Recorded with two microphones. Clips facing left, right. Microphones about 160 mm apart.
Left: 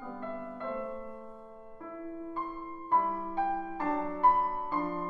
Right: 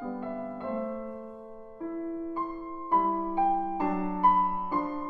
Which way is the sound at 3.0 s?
35° right (ahead or behind).